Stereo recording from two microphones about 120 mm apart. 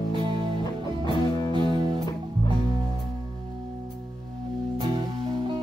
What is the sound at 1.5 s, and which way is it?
Music, 40° right (ahead or behind).